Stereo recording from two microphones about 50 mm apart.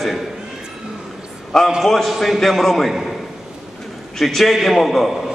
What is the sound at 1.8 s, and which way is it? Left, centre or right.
A man's voice, centre.